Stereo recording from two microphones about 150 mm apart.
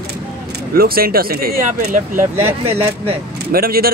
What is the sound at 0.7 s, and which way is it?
Speech, 80° right.